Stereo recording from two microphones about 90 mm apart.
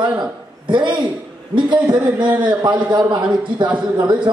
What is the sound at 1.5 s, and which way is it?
A man's voice, 60° right (ahead or behind).